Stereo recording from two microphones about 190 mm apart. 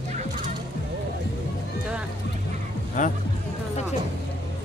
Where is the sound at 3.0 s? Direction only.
45° left (ahead or behind).